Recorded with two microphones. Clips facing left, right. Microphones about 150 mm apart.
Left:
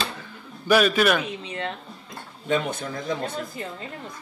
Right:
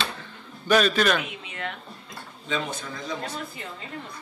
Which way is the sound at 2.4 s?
55° left (ahead or behind).